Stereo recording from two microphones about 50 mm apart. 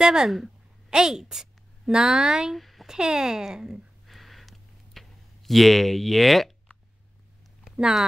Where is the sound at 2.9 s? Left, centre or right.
Centre.